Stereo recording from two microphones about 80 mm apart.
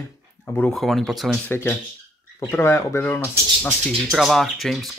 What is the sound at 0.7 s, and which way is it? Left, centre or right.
Speech, centre.